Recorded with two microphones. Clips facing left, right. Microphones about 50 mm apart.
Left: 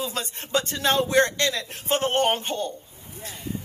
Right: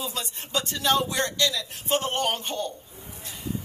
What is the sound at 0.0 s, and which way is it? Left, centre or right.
A woman's voice, left.